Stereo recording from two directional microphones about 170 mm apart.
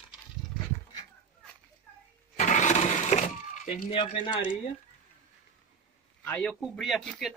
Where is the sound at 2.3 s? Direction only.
45° left (ahead or behind).